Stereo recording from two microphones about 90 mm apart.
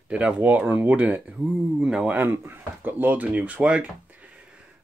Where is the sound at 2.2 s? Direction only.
25° right (ahead or behind).